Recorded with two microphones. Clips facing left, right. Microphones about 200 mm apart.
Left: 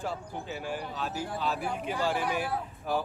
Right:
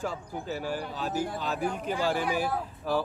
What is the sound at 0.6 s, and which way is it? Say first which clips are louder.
Speech: right 2 dB; 45° right (ahead or behind).